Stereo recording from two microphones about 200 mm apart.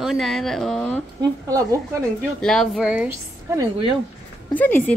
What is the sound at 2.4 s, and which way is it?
Speech, centre (ahead or behind).